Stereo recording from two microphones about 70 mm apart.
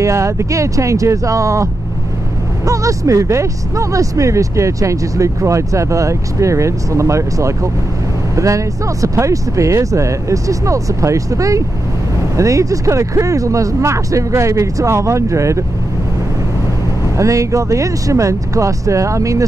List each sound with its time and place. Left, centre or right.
0.0 s speech: right
17.2 s speech: right